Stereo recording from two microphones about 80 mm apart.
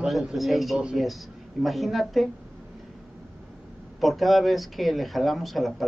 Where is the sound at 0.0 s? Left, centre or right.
Centre.